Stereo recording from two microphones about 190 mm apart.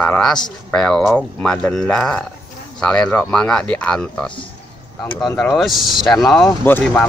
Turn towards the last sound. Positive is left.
turn(degrees=10)  # may be behind; listen again after turning